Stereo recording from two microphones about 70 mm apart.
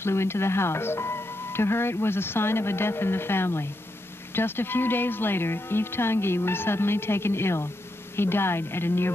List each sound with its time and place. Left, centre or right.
0.0 s speech: left